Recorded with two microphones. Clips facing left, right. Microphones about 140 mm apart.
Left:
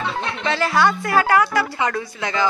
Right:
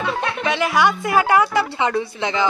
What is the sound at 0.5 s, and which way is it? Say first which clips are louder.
A woman's voice: even; 15° right (ahead or behind).